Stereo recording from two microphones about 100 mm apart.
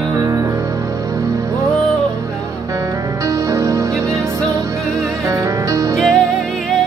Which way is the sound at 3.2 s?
35° right (ahead or behind).